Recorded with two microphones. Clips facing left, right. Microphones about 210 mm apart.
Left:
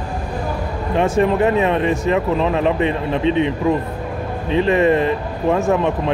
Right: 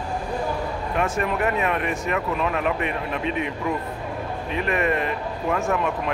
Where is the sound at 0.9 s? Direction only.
30° left (ahead or behind).